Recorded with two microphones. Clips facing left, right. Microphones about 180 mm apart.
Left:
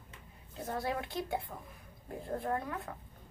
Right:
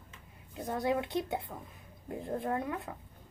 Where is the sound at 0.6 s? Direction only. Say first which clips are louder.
Right 4 dB; 15° right (ahead or behind).